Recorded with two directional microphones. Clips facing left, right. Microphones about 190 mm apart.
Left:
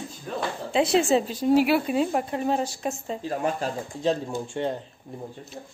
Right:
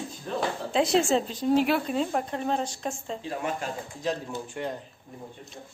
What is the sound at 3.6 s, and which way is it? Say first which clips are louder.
Speech: left 5 dB; 30° left (ahead or behind).